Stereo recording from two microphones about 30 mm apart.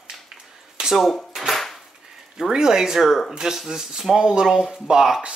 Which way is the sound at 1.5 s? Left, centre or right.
Centre.